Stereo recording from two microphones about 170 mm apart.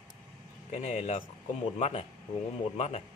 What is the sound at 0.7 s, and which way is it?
Speech, 40° left (ahead or behind).